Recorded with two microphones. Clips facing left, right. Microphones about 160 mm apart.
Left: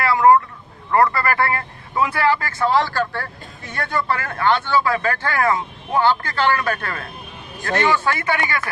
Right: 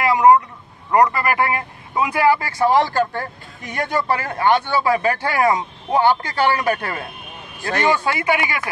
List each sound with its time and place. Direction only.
0.0 s vehicle: 15° right (ahead or behind)
0.9 s speech: 15° right (ahead or behind)